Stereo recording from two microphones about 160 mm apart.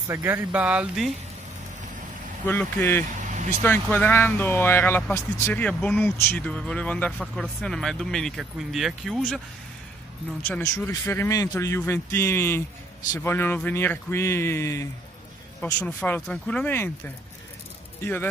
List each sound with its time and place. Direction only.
0.1 s speech: 15° right (ahead or behind)
2.4 s speech: 15° left (ahead or behind)
10.4 s speech: 10° left (ahead or behind)